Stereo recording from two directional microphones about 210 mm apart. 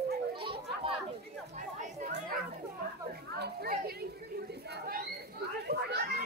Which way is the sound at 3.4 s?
45° right (ahead or behind).